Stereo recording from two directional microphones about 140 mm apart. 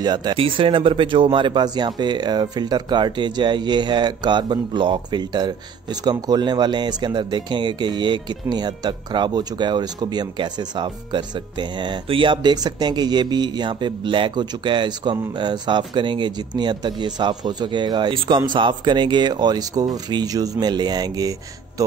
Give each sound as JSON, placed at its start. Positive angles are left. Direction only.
{"t": 0.0, "sound": "speech", "side_deg": -30}